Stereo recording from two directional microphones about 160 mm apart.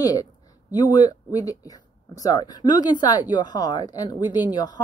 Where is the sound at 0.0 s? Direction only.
20° left (ahead or behind).